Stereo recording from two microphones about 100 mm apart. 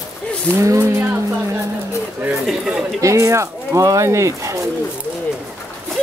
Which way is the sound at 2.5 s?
5° right (ahead or behind).